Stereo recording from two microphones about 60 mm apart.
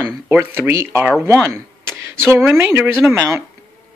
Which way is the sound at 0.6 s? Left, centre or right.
Right.